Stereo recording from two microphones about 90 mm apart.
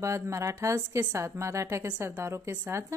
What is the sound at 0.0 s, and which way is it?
A woman's voice, 35° right (ahead or behind).